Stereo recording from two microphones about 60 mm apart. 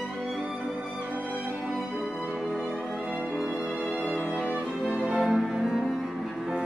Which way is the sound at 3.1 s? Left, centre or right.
Right.